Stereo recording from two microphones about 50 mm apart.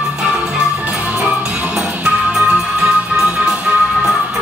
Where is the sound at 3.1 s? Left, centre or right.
Centre.